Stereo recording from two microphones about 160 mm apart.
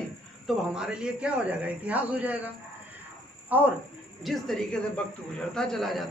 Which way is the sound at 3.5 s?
10° right (ahead or behind).